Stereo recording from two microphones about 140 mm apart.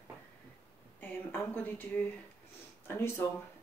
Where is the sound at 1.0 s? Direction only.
10° left (ahead or behind).